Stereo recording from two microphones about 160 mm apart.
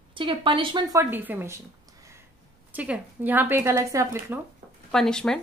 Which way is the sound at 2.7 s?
10° right (ahead or behind).